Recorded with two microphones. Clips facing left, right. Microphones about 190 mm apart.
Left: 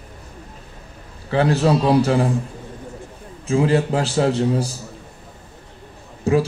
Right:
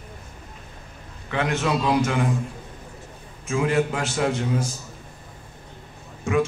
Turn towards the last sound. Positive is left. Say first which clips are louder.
# left 5 dB
turn(degrees=35)  # may be behind; listen again after turning